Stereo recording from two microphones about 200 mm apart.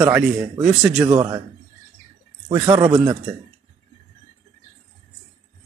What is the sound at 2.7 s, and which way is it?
Speech, 15° right (ahead or behind).